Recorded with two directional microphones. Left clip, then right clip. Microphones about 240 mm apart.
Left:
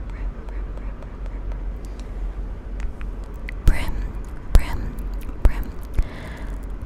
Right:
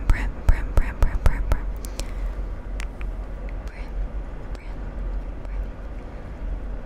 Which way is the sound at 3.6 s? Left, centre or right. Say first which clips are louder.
Left 9 dB; left.